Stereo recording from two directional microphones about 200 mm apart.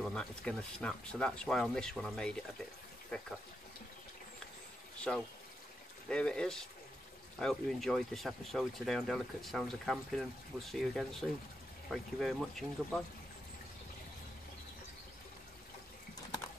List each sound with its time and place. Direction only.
0.0 s speech: 5° left (ahead or behind)
5.1 s speech: 5° left (ahead or behind)